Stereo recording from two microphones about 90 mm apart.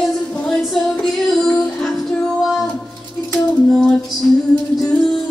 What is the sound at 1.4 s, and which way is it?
Music, 5° left (ahead or behind).